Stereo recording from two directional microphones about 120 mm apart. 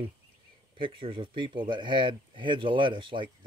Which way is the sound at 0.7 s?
45° right (ahead or behind).